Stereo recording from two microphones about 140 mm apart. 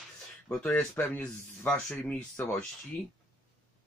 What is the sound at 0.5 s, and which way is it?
Speech, 10° left (ahead or behind).